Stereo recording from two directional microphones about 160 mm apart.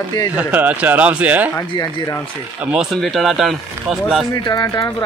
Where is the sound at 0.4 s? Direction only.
10° right (ahead or behind).